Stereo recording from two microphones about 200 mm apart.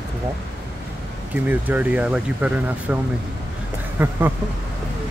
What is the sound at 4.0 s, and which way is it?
Speech, 10° right (ahead or behind).